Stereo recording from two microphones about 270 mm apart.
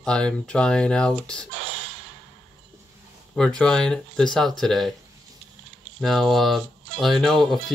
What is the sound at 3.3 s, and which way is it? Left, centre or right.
Speech, centre.